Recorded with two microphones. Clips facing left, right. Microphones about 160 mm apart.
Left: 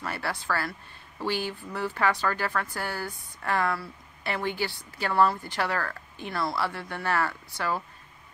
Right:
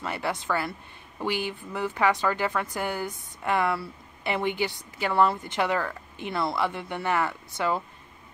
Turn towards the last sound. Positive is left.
turn(degrees=-20)  # may be behind; listen again after turning